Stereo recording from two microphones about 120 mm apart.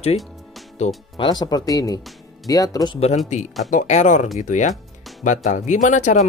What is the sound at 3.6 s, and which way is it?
Speech, 85° left.